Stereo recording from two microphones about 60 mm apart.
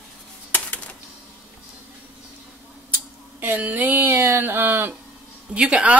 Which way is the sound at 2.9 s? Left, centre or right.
Right.